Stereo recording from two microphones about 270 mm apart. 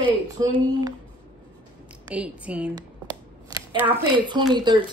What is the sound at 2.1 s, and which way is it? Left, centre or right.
Speech, centre.